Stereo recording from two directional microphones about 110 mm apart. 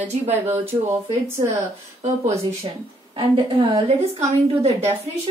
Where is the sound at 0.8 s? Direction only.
70° right (ahead or behind).